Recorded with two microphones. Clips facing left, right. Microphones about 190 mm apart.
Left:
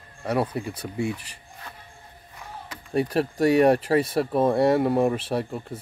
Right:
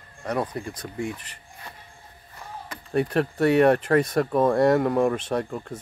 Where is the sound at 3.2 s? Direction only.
35° left (ahead or behind).